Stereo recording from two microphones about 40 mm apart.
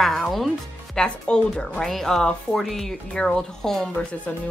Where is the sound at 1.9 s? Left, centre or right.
Centre.